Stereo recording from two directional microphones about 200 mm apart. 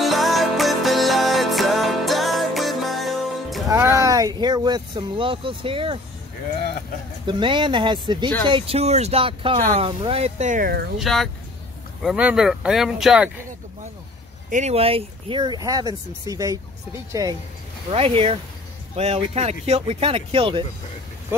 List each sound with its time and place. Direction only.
0.0 s music: centre (ahead or behind)
3.6 s music: 15° right (ahead or behind)
4.0 s speech: 15° right (ahead or behind)
7.2 s speech: 25° right (ahead or behind); by 10.9 s 50° right (ahead or behind)
11.0 s speech: centre (ahead or behind)
14.5 s speech: 35° right (ahead or behind)
17.9 s speech: 30° right (ahead or behind)